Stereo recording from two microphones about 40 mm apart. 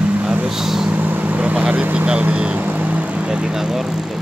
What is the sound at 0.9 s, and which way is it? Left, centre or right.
Vehicle, right.